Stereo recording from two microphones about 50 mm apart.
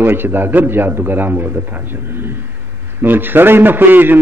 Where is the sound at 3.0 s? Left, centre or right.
Right.